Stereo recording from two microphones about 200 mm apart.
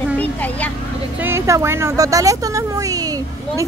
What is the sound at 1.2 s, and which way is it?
Speech, 15° right (ahead or behind).